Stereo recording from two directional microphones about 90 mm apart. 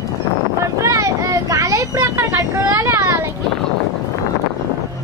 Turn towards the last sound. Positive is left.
turn(degrees=-30)  # may be behind; listen again after turning